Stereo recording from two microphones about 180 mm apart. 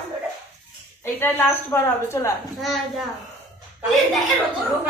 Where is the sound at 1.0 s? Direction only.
10° left (ahead or behind).